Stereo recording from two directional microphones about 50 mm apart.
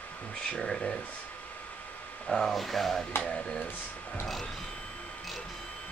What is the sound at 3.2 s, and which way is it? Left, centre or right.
Speech, centre.